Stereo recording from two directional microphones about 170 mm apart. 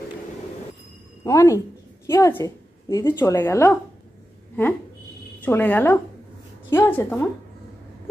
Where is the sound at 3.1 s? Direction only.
15° left (ahead or behind).